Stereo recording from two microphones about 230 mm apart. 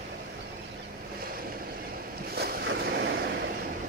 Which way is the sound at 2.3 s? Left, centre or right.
Right.